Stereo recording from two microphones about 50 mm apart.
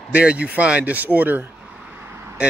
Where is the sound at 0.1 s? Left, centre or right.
Right.